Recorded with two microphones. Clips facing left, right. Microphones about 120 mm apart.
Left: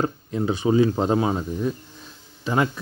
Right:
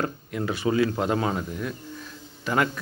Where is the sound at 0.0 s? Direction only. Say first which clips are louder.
Left 4 dB; 20° left (ahead or behind).